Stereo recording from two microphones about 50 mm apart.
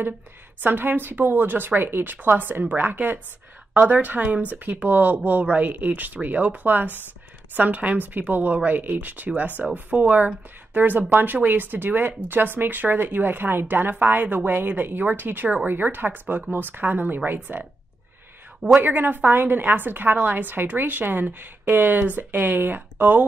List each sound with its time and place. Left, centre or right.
0.6 s speech: right
18.8 s speech: right